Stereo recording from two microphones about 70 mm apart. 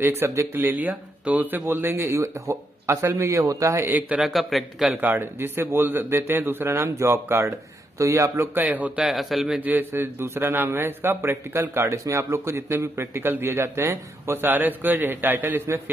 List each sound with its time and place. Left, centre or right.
0.0 s a man's voice: right
0.6 s speech: right
4.2 s a man's voice: centre
5.0 s a man's voice: right
8.5 s speech: right
9.0 s a man's voice: centre
9.6 s a man's voice: right